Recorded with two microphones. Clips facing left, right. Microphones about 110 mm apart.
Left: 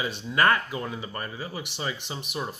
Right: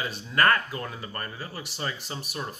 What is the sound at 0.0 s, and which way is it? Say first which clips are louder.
Speech: left 1 dB; 20° left (ahead or behind).